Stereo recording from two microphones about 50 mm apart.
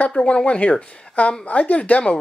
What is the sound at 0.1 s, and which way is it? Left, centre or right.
Speech, centre.